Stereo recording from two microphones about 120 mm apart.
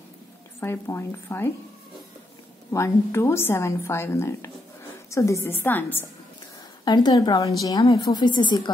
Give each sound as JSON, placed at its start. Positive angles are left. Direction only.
{"t": 0.6, "sound": "a woman's voice", "side_deg": 20}
{"t": 2.7, "sound": "a woman's voice", "side_deg": 25}
{"t": 6.8, "sound": "a woman's voice", "side_deg": 35}